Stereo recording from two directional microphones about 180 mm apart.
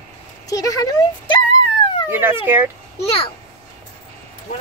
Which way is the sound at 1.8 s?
30° left (ahead or behind).